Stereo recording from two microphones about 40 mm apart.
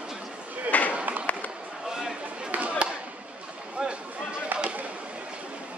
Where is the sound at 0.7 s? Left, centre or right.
Left.